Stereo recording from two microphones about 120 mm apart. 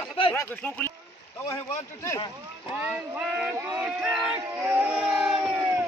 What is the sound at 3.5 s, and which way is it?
Speech, 15° right (ahead or behind).